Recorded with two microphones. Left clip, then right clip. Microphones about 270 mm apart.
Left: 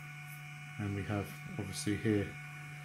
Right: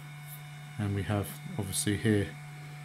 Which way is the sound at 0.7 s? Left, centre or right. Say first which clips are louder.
Right 5 dB; right.